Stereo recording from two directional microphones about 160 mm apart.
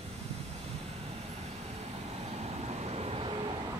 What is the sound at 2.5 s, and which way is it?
Vehicle, 40° right (ahead or behind).